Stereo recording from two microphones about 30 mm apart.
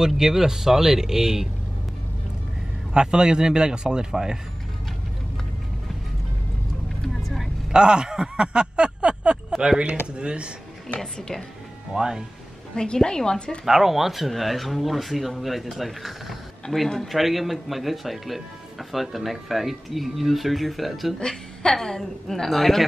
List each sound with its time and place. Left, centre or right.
0.0 s speech: centre
2.9 s a man's voice: right
7.7 s a sound: right
9.6 s speech: right
11.1 s a woman's voice: left
11.9 s a man's voice: centre
12.7 s a woman's voice: left
13.7 s speech: centre
16.7 s a woman's voice: centre
17.1 s speech: centre
21.2 s a woman's voice: left
22.5 s speech: centre